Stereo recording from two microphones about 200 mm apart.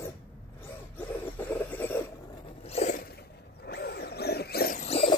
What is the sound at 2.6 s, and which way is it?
Zipper, 35° left (ahead or behind).